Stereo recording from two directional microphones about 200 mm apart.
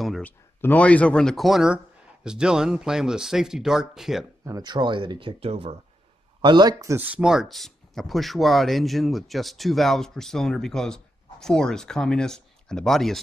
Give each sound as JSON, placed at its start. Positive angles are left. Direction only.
{"t": 0.0, "sound": "speech", "side_deg": 0}
{"t": 4.5, "sound": "speech", "side_deg": -20}